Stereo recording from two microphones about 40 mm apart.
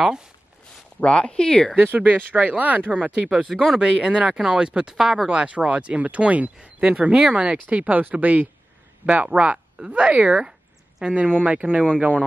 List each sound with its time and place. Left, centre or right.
0.0 s speech: centre
1.0 s speech: left
1.8 s speech: right
4.9 s speech: centre
5.3 s speech: right
7.6 s speech: right
9.0 s speech: right